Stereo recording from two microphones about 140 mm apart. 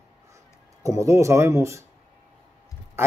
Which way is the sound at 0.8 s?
20° right (ahead or behind).